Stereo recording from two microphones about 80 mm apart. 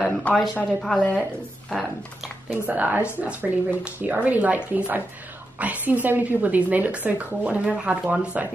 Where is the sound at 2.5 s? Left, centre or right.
Centre.